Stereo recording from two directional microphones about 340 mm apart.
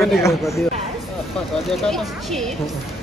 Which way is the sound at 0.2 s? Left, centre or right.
Centre.